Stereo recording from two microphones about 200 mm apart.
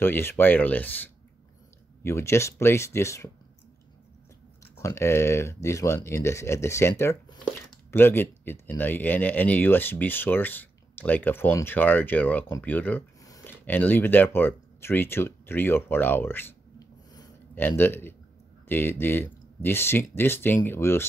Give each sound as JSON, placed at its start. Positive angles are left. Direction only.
{"t": 0.0, "sound": "speech", "side_deg": 10}
{"t": 4.7, "sound": "speech", "side_deg": 15}
{"t": 17.1, "sound": "a sound", "side_deg": 15}
{"t": 18.7, "sound": "speech", "side_deg": 10}